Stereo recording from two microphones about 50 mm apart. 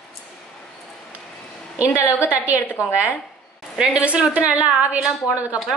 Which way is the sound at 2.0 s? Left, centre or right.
Right.